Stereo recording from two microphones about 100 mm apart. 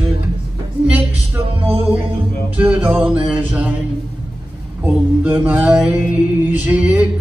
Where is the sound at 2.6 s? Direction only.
20° right (ahead or behind).